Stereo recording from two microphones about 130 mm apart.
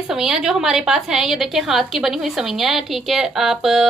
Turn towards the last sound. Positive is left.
turn(degrees=-5)  # may be behind; listen again after turning